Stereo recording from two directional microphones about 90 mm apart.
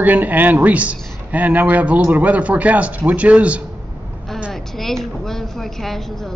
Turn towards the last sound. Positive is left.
turn(degrees=5)  # may be behind; listen again after turning